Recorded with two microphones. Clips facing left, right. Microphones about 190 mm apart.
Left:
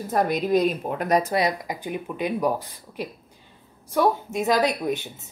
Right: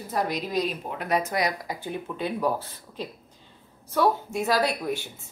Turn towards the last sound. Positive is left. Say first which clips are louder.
# left 3 dB
turn(degrees=20)  # may be behind; listen again after turning